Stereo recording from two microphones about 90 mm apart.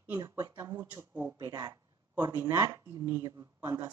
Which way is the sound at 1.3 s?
45° right (ahead or behind).